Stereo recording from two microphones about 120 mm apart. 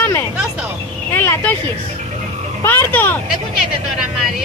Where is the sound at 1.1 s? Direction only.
15° left (ahead or behind).